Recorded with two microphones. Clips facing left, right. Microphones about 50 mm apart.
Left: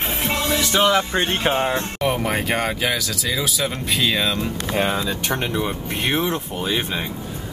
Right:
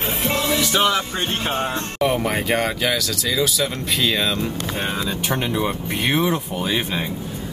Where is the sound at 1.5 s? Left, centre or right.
Left.